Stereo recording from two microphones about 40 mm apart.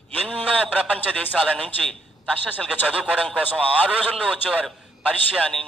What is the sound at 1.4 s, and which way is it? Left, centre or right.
A man's voice, left.